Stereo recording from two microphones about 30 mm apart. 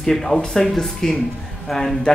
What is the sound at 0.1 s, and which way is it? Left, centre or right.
Speech, centre.